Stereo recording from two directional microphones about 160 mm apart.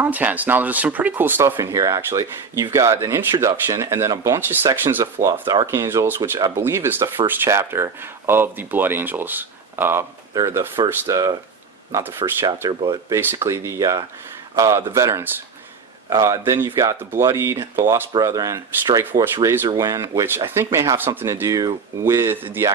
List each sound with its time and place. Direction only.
0.0 s speech: 10° right (ahead or behind)
12.4 s speech: 25° right (ahead or behind)